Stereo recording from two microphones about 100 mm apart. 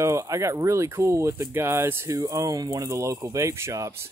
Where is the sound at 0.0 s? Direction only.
30° right (ahead or behind).